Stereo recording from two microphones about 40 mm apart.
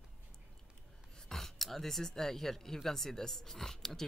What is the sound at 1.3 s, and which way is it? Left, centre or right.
Speech, centre.